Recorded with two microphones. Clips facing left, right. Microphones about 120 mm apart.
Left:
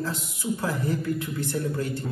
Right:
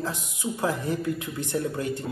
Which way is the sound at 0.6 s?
20° right (ahead or behind).